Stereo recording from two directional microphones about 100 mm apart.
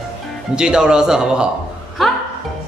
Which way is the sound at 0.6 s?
10° right (ahead or behind).